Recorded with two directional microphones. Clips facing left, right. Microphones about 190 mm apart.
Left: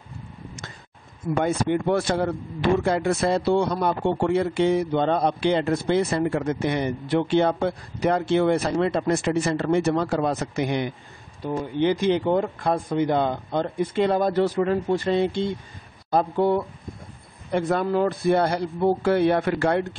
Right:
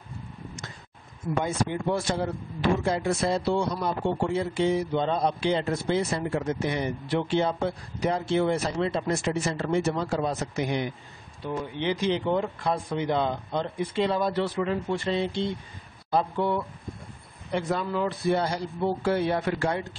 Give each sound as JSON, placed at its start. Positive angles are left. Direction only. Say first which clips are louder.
{"t": 1.4, "sound": "a man's voice", "louder": "left 6 dB", "side_deg": 65}
{"t": 11.5, "sound": "a man's voice", "louder": "left 6 dB", "side_deg": 45}